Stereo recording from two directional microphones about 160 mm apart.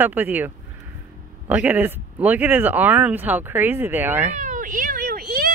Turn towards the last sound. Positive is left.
turn(degrees=-75)  # may be behind; listen again after turning